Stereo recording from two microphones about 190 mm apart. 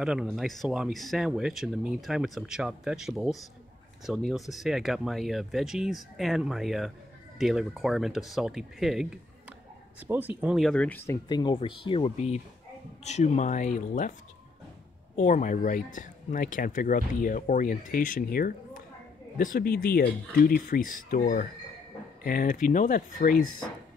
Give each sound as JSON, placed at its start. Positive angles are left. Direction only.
{"t": 0.0, "sound": "speech", "side_deg": -5}
{"t": 11.2, "sound": "speech", "side_deg": 25}
{"t": 15.1, "sound": "speech", "side_deg": 40}